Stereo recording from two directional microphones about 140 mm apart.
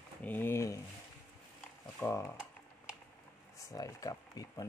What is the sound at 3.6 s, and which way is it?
Speech, 25° left (ahead or behind).